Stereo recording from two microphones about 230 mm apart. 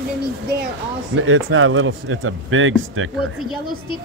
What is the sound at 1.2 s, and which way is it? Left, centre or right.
Speech, right.